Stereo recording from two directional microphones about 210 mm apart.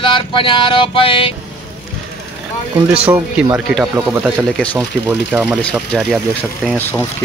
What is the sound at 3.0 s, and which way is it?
Speech, 5° right (ahead or behind).